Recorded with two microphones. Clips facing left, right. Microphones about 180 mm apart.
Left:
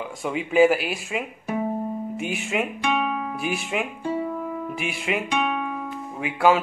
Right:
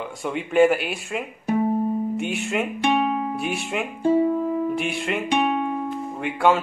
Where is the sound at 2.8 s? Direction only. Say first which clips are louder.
Right 4 dB; 30° right (ahead or behind).